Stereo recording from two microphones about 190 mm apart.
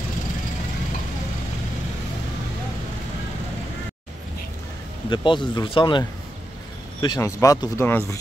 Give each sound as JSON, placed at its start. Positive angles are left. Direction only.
{"t": 5.1, "sound": "speech", "side_deg": 25}